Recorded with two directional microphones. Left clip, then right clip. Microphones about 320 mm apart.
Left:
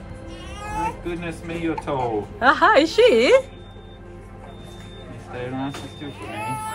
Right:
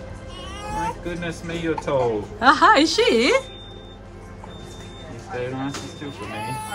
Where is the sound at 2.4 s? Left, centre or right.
Centre.